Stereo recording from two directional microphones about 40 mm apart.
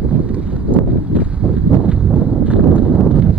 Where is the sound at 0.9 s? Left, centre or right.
Right.